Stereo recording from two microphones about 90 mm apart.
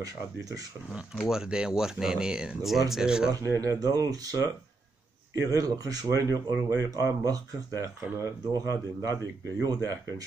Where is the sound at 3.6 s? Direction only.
40° right (ahead or behind).